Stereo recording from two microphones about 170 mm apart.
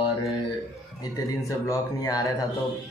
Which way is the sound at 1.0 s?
20° left (ahead or behind).